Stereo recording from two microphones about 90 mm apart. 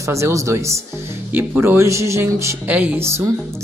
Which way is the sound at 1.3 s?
20° right (ahead or behind).